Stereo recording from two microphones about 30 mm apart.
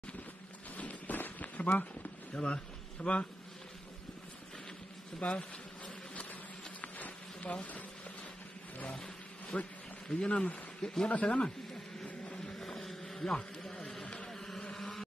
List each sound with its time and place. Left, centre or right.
0.7 s walk: left
1.6 s speech: left
5.2 s speech: left
6.8 s a sound: left
8.9 s a sound: left
10.0 s speech: left
12.3 s vehicle: left
12.5 s vehicle: centre
14.2 s a sound: centre
14.7 s vehicle: centre